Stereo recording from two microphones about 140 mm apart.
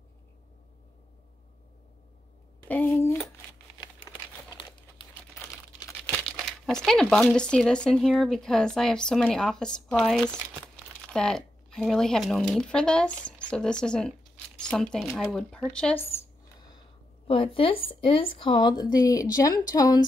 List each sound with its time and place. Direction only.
2.7 s speech: 15° left (ahead or behind)
6.0 s crumpling: 10° left (ahead or behind)
6.3 s speech: 5° left (ahead or behind)
10.3 s speech: 15° right (ahead or behind)
11.1 s speech: 5° left (ahead or behind)
17.3 s a woman's voice: 40° left (ahead or behind)